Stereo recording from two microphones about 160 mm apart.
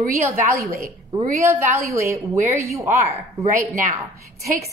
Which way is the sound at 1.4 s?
15° right (ahead or behind).